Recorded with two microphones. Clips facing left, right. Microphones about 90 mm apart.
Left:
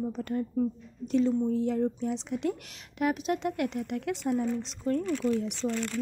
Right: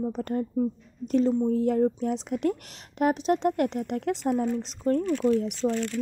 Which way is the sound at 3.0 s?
35° right (ahead or behind).